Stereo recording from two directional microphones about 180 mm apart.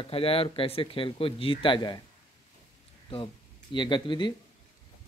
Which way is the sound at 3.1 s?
30° left (ahead or behind).